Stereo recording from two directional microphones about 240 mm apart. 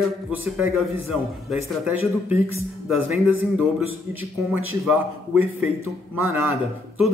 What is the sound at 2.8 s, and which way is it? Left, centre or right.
Speech, centre.